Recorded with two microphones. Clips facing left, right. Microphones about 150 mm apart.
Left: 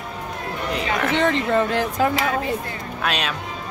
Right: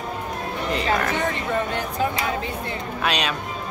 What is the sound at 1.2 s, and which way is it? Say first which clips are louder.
Speech: left 5 dB; 90° left.